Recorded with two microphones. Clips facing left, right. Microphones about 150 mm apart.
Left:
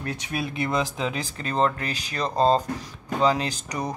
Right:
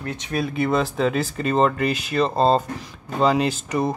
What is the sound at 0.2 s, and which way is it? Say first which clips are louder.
Speech: right 8 dB; 5° left (ahead or behind).